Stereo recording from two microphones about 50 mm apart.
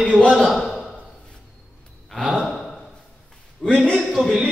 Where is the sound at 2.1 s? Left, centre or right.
Centre.